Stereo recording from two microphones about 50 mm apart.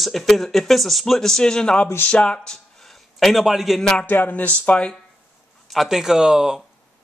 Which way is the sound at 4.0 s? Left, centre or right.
Left.